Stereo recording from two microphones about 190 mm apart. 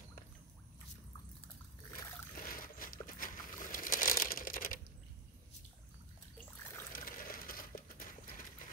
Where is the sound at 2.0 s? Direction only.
50° left (ahead or behind).